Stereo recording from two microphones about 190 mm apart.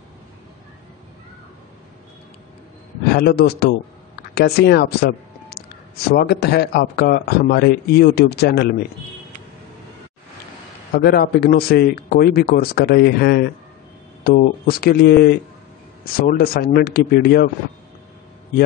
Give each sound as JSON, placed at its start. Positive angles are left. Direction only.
{"t": 3.1, "sound": "speech", "side_deg": 55}
{"t": 11.0, "sound": "speech", "side_deg": 60}